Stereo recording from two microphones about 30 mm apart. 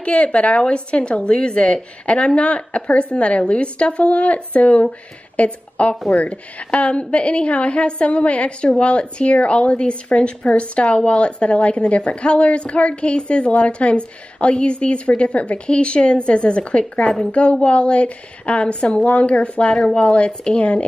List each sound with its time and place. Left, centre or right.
0.0 s a woman's voice: left
17.3 s a woman's voice: left
19.0 s a woman's voice: left
19.7 s a woman's voice: left